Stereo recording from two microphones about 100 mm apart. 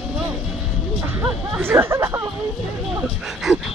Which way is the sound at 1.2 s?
20° right (ahead or behind).